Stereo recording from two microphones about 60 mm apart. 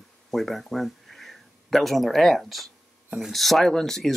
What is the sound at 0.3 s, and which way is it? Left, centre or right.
Speech, centre.